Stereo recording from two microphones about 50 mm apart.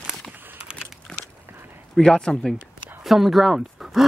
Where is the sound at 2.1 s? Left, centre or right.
Centre.